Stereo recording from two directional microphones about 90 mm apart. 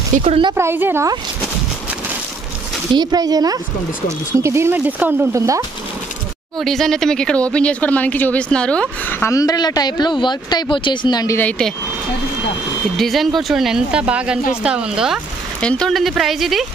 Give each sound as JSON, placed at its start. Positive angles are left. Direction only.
{"t": 0.3, "sound": "speech", "side_deg": -65}
{"t": 0.6, "sound": "speech", "side_deg": -25}
{"t": 3.0, "sound": "speech", "side_deg": -45}
{"t": 4.4, "sound": "speech", "side_deg": -30}
{"t": 5.3, "sound": "speech", "side_deg": -35}
{"t": 6.6, "sound": "speech", "side_deg": 5}
{"t": 9.3, "sound": "speech", "side_deg": 40}
{"t": 12.9, "sound": "speech", "side_deg": 0}
{"t": 15.6, "sound": "speech", "side_deg": 5}